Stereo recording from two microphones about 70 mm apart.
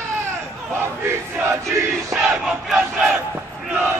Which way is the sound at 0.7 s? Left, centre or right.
Right.